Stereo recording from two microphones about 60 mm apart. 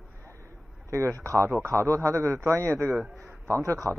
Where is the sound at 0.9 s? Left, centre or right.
Right.